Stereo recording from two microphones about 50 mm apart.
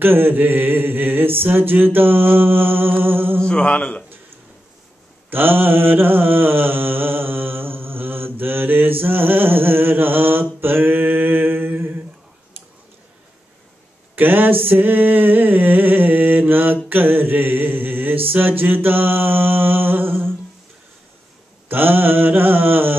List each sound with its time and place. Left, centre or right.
0.0 s mantra: right
3.4 s mantra: centre
3.7 s a sound: left
5.3 s mantra: right
14.1 s a sound: right
16.9 s mantra: right
21.6 s mantra: right